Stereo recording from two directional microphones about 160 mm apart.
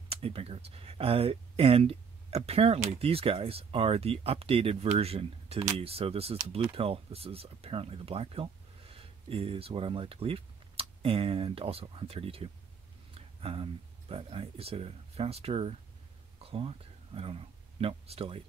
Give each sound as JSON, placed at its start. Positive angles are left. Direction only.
{"t": 0.1, "sound": "speech", "side_deg": -35}